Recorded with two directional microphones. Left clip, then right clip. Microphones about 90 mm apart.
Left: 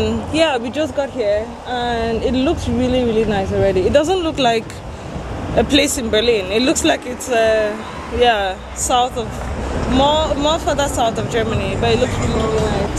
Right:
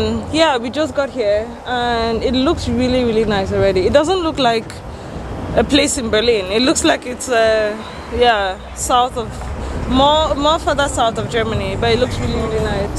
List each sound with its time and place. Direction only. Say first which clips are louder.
0.0 s a sound: right 1 dB; 25° right (ahead or behind)
0.8 s speech: right 2 dB; 35° right (ahead or behind)
12.1 s speech: left 2 dB; 20° left (ahead or behind)